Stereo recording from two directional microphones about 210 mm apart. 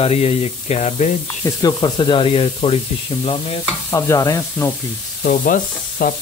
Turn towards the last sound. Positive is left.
turn(degrees=40)  # may be behind; listen again after turning